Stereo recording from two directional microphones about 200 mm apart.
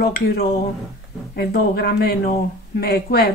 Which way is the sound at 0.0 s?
50° left (ahead or behind).